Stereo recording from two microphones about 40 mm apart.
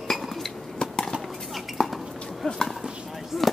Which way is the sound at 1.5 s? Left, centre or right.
Centre.